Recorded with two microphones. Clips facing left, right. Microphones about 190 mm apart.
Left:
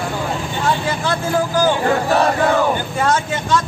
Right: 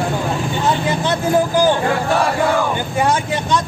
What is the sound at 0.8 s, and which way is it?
Speech, 20° right (ahead or behind).